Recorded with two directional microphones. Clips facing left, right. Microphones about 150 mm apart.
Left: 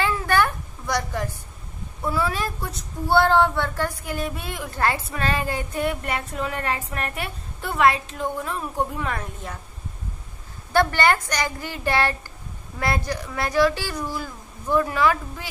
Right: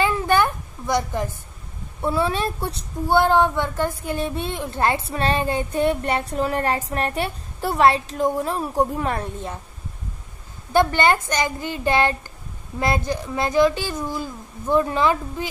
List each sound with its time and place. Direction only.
0.0 s a sound: 20° right (ahead or behind)
2.0 s speech: 25° right (ahead or behind)
3.1 s speech: 15° right (ahead or behind)
10.7 s speech: 20° right (ahead or behind)